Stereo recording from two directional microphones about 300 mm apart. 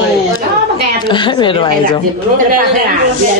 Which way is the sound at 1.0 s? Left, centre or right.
Centre.